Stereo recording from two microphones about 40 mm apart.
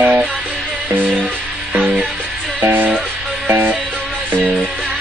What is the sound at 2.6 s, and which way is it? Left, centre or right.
Music, right.